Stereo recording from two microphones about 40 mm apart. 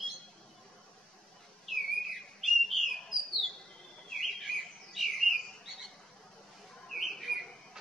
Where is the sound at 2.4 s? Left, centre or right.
Centre.